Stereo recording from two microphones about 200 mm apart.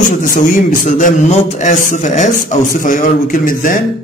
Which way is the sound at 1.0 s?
35° left (ahead or behind).